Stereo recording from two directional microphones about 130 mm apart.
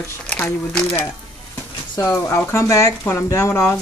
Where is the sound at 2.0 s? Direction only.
20° left (ahead or behind).